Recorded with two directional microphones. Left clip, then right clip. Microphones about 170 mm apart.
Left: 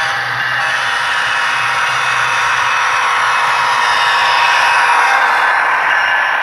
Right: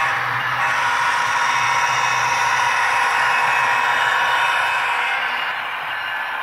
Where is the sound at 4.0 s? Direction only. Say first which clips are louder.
Left 6 dB; 20° left (ahead or behind); by 6.4 s 55° left (ahead or behind).